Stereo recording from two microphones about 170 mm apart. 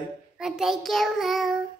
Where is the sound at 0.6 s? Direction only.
Centre (ahead or behind).